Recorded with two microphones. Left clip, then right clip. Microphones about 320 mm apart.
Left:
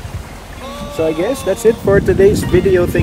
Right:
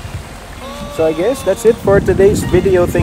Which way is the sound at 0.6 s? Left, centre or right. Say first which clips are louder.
Right 2 dB; centre.